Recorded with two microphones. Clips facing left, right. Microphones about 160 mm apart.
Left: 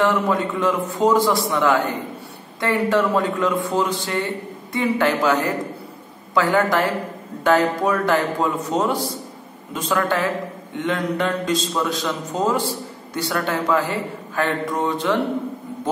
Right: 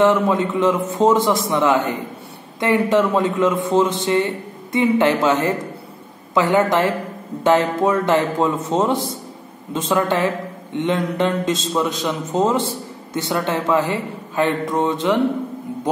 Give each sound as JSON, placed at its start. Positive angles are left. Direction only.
{"t": 0.0, "sound": "a man's voice", "side_deg": -20}